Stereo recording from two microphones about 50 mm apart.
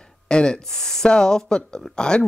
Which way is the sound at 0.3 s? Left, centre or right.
Centre.